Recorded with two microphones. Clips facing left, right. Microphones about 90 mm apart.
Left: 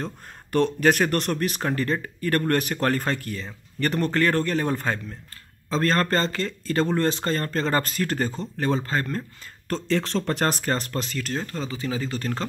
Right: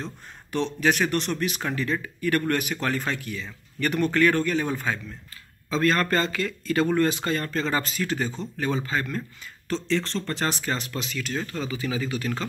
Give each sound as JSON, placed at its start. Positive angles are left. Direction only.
{"t": 0.0, "sound": "speech", "side_deg": 50}
{"t": 5.7, "sound": "a man's voice", "side_deg": 35}
{"t": 9.7, "sound": "speech", "side_deg": 50}
{"t": 10.6, "sound": "speech", "side_deg": 45}
{"t": 11.6, "sound": "a man's voice", "side_deg": 30}